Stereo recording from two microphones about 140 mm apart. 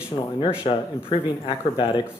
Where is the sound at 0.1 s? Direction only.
40° left (ahead or behind).